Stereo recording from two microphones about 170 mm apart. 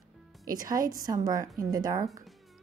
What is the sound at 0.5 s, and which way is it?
Speech, 20° right (ahead or behind).